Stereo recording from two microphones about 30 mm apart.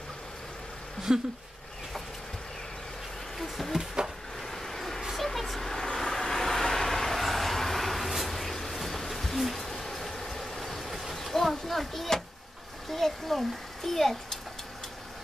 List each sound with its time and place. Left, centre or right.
1.1 s speech: right
3.3 s insect: centre
4.0 s a sound: right
4.4 s vehicle: centre
5.1 s a sound: centre
5.9 s vehicle: centre
8.3 s bird: centre
10.3 s train: centre
11.1 s a sound: centre
12.9 s a child's voice: centre